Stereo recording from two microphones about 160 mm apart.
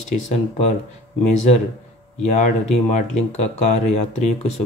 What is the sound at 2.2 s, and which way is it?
Speech, 45° left (ahead or behind).